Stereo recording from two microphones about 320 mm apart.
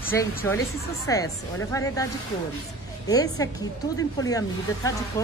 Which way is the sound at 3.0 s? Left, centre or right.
Centre.